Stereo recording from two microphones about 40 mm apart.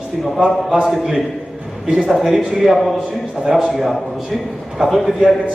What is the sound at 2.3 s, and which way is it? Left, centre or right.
A man's voice, centre.